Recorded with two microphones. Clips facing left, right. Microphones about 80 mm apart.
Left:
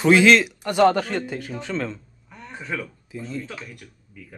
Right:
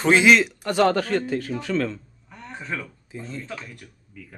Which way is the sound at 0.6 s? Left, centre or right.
Centre.